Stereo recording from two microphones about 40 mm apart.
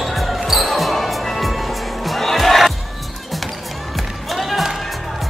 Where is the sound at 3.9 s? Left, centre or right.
Centre.